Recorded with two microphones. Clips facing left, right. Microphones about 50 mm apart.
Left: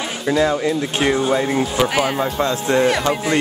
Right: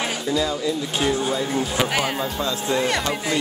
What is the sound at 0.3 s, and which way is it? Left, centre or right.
Speech, left.